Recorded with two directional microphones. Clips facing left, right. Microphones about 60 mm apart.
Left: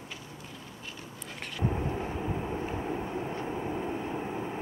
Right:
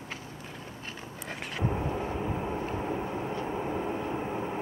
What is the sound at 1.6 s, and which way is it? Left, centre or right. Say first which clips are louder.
Vehicle: even; centre.